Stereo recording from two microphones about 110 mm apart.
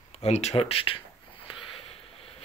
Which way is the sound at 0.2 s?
80° left.